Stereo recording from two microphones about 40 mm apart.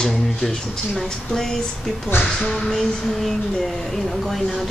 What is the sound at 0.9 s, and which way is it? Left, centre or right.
Speech, centre.